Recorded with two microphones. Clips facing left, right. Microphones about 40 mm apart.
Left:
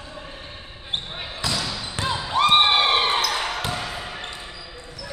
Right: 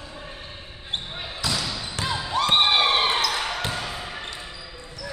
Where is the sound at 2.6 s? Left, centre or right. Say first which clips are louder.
Left 1 dB; left.